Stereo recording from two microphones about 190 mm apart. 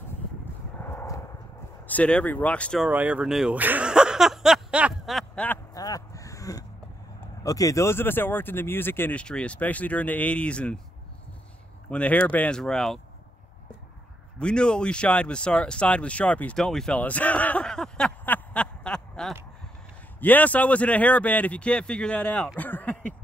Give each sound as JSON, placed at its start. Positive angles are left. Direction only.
{"t": 0.7, "sound": "a sound", "side_deg": 10}
{"t": 1.9, "sound": "speech", "side_deg": 5}
{"t": 2.9, "sound": "speech", "side_deg": -10}
{"t": 5.8, "sound": "a sound", "side_deg": 20}
{"t": 7.4, "sound": "speech", "side_deg": 20}
{"t": 11.9, "sound": "speech", "side_deg": 5}
{"t": 14.4, "sound": "speech", "side_deg": 5}